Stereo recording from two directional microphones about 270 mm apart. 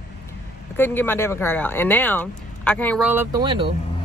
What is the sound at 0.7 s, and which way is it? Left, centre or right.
Speech, centre.